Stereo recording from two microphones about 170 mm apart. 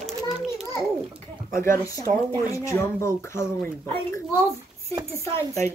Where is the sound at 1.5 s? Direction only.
15° left (ahead or behind).